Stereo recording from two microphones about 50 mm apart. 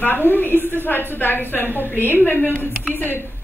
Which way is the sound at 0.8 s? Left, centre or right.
Left.